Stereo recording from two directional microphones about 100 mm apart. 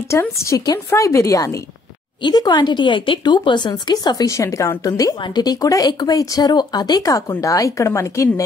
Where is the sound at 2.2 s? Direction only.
45° left (ahead or behind).